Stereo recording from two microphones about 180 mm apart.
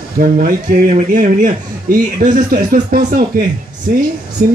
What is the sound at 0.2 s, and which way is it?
A man's voice, 50° right (ahead or behind).